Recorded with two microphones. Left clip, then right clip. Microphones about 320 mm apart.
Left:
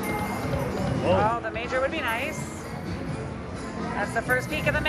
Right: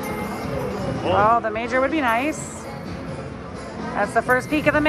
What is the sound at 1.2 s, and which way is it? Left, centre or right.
Speech, centre.